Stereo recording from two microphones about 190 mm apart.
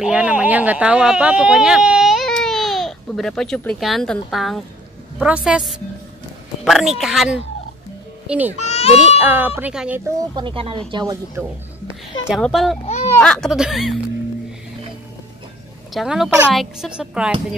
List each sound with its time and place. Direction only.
0.0 s a woman's voice: 5° right (ahead or behind)
8.6 s speech: 35° left (ahead or behind)
9.2 s speech: 10° right (ahead or behind)
10.3 s speech: 25° right (ahead or behind)
12.3 s a woman's voice: centre (ahead or behind)
12.8 s a sound: 35° left (ahead or behind)
13.2 s a woman's voice: 5° left (ahead or behind)
15.9 s a woman's voice: centre (ahead or behind)